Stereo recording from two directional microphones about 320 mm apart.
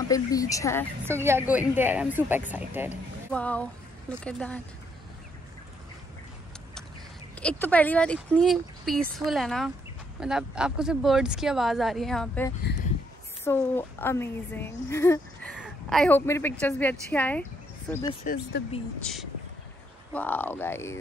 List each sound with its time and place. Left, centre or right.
0.1 s speech: centre
1.0 s a woman's voice: centre
7.3 s a woman's voice: centre
18.2 s speech: left
19.1 s speech: centre